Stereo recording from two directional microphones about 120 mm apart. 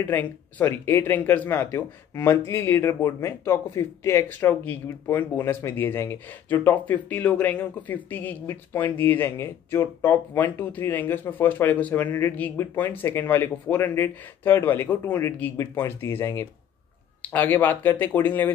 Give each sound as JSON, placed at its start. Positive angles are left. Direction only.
{"t": 0.0, "sound": "speech", "side_deg": 15}